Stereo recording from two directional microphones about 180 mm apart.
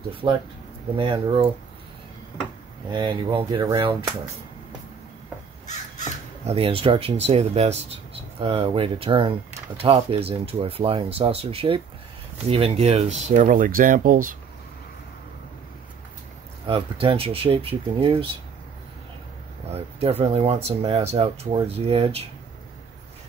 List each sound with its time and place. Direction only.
0.1 s speech: 30° right (ahead or behind)
2.9 s speech: 25° right (ahead or behind)
6.4 s speech: 30° right (ahead or behind); by 14.3 s 50° right (ahead or behind)
16.6 s speech: 30° right (ahead or behind)
19.7 s speech: 35° right (ahead or behind)